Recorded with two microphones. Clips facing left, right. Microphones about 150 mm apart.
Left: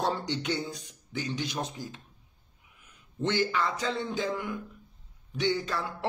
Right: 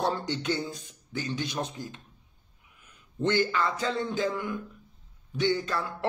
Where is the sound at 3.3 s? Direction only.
10° left (ahead or behind).